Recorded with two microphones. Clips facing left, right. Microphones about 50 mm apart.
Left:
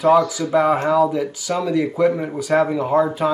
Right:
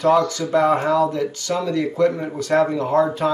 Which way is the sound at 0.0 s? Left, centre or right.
Centre.